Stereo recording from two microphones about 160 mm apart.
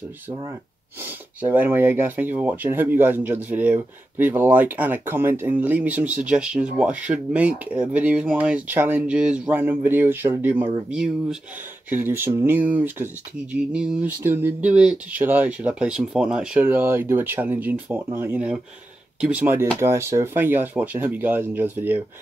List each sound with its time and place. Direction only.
0.3 s speech: 25° right (ahead or behind)
1.0 s speech: 10° right (ahead or behind)